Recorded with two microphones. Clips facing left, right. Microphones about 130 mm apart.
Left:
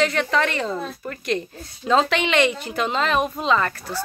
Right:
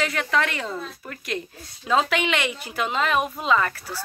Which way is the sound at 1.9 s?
5° right (ahead or behind).